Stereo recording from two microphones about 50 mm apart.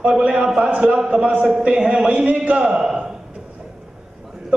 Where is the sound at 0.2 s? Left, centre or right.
Right.